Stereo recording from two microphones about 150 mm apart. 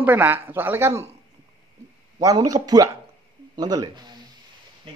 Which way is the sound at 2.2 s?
25° right (ahead or behind).